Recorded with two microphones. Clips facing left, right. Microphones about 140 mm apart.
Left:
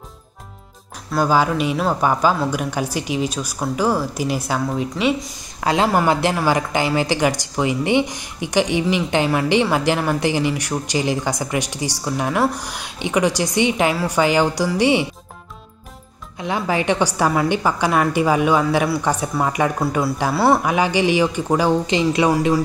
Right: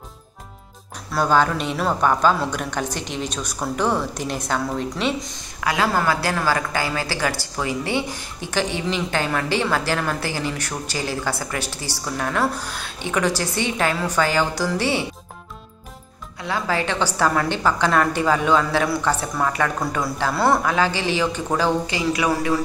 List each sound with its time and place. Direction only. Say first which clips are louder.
1.1 s a woman's voice: left 1 dB; 5° left (ahead or behind)
5.6 s a woman's voice: left 4 dB; 25° left (ahead or behind)
16.3 s a woman's voice: left 3 dB; 20° left (ahead or behind)